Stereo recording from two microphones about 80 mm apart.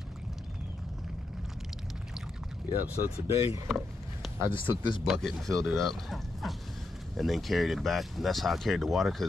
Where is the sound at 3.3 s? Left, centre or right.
Right.